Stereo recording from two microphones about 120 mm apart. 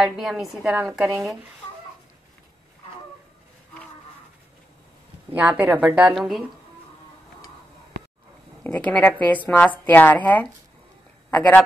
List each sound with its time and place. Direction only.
0.0 s speech: centre (ahead or behind)
5.3 s a woman's voice: 10° right (ahead or behind)
8.6 s a woman's voice: 15° left (ahead or behind)